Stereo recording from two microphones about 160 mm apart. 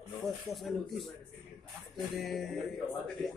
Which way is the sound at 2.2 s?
Centre (ahead or behind).